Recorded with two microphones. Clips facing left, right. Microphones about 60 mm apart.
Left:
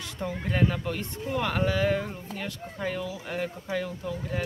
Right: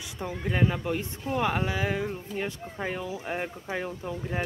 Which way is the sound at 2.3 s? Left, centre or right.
Right.